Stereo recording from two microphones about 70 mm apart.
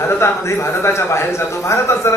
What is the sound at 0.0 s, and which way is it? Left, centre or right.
A man's voice, left.